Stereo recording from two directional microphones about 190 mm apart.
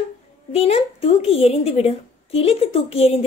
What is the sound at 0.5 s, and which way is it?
A woman's voice, 30° left (ahead or behind).